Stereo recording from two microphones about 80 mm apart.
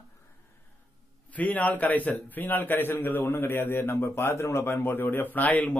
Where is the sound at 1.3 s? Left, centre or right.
Centre.